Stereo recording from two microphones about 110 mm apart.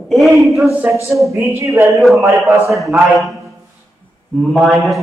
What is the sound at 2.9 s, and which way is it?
Speech, centre (ahead or behind).